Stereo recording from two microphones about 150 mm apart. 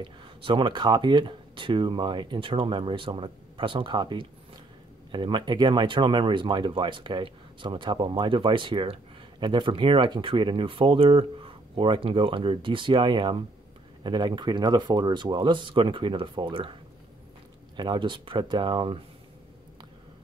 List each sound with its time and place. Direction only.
0.0 s speech: 35° right (ahead or behind)
17.7 s speech: 30° right (ahead or behind)